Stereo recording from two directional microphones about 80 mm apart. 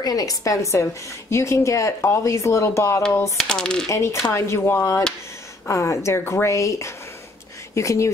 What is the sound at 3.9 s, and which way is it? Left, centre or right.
Speech, left.